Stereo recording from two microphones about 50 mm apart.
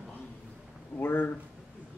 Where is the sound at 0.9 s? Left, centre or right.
Left.